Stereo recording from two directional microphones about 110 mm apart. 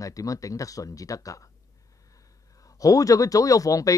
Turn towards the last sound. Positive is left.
turn(degrees=30)  # may be behind; listen again after turning